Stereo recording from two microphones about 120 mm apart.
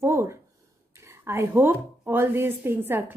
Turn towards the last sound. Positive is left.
turn(degrees=-20)  # may be behind; listen again after turning